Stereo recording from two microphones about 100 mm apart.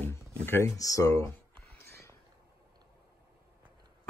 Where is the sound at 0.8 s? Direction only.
35° left (ahead or behind).